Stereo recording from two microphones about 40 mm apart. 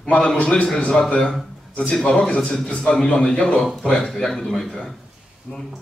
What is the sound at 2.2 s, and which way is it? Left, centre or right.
A man's voice, left.